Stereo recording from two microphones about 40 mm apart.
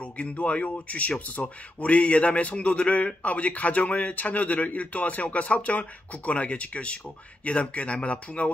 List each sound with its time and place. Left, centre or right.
0.0 s speech: left